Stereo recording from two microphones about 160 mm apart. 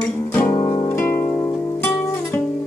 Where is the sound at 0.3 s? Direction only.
10° left (ahead or behind).